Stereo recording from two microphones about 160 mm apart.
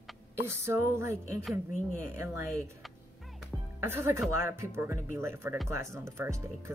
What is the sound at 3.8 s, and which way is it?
Speech, 15° right (ahead or behind).